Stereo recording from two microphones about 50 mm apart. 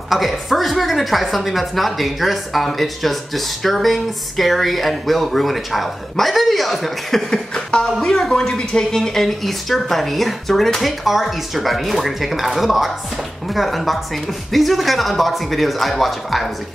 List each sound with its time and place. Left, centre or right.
0.1 s a woman's voice: centre
7.2 s a sound: centre
7.8 s a woman's voice: centre